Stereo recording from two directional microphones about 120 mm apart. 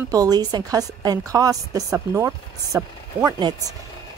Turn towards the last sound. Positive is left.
turn(degrees=-35)  # may be behind; listen again after turning